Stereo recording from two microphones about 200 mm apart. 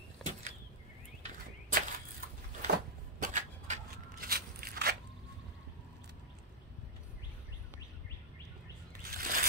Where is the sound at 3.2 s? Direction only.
40° right (ahead or behind).